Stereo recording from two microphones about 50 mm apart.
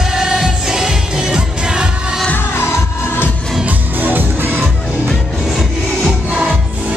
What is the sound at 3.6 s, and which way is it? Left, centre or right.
Music, right.